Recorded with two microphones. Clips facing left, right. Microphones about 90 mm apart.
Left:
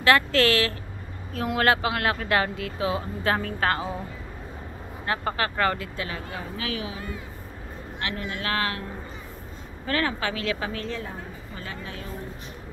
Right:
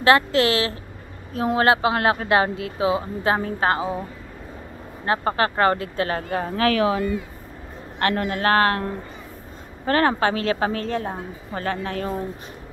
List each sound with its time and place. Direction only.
0.0 s speech: 25° right (ahead or behind)
5.0 s speech: 30° right (ahead or behind)
6.0 s speech: 50° right (ahead or behind); by 7.1 s 70° right (ahead or behind)
8.0 s a woman's voice: 55° right (ahead or behind)